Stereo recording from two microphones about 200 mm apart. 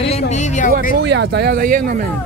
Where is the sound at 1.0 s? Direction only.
60° right (ahead or behind).